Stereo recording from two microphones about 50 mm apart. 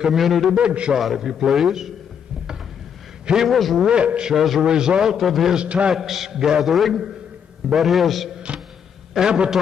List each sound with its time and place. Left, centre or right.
0.0 s a man's voice: centre
0.6 s a man's voice: centre
0.9 s a man's voice: centre
3.4 s a man's voice: centre
3.8 s a man's voice: right
4.3 s a man's voice: centre
5.2 s a man's voice: centre
5.5 s a man's voice: right
5.9 s a man's voice: centre
8.5 s music: right
9.1 s a man's voice: centre